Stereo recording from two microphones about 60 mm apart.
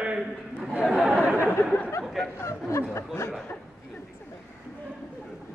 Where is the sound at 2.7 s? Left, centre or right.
Left.